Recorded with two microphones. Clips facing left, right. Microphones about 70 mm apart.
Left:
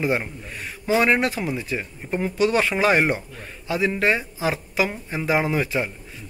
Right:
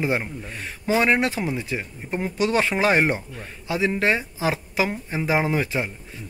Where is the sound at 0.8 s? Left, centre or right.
Right.